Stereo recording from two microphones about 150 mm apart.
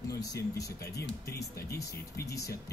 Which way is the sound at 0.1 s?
25° left (ahead or behind).